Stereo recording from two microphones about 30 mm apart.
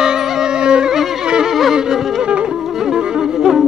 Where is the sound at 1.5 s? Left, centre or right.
Centre.